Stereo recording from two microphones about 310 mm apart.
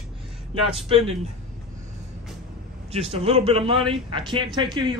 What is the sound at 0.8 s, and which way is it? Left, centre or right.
Speech, centre.